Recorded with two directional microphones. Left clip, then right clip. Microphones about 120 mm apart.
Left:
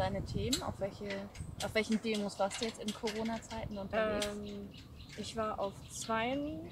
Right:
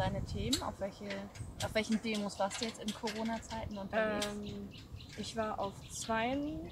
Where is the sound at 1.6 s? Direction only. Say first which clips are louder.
Left 1 dB; 55° left (ahead or behind).